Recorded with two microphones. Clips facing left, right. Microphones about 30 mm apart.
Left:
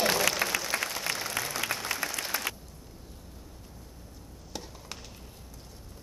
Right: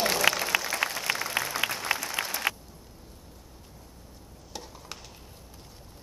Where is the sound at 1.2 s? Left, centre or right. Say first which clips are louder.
Right 3 dB; centre.